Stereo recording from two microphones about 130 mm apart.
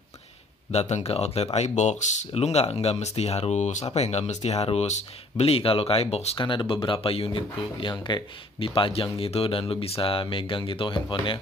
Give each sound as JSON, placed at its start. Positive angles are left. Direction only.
{"t": 0.7, "sound": "speech", "side_deg": 60}
{"t": 6.3, "sound": "speech", "side_deg": 40}